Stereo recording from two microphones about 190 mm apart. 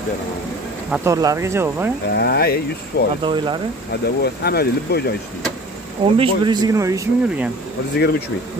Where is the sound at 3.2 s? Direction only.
25° right (ahead or behind).